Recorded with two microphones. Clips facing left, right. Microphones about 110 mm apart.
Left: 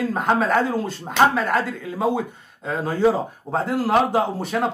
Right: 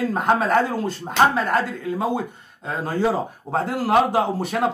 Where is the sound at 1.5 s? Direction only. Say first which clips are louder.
Right 1 dB; centre (ahead or behind).